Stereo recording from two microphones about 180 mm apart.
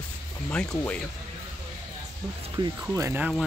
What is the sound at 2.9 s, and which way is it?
Speech, 10° right (ahead or behind).